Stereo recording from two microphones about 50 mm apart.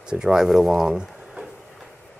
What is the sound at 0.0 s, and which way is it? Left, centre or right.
Speech, centre.